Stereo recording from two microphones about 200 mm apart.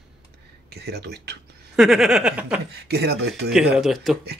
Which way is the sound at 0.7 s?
55° right (ahead or behind).